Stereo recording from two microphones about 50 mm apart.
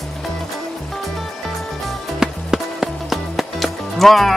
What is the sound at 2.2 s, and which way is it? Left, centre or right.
Music, centre.